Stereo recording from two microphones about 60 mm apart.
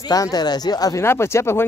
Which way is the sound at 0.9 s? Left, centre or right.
Left.